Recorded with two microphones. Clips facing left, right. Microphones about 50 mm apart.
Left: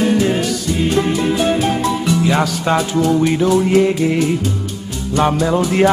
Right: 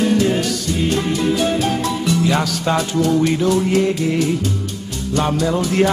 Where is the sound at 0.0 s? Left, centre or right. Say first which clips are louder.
Left 1 dB; centre.